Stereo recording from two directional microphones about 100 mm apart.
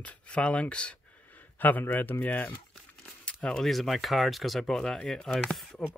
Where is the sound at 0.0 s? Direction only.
10° left (ahead or behind).